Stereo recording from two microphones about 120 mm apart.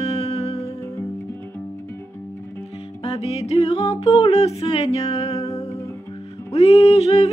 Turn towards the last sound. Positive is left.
turn(degrees=60)  # may be behind; listen again after turning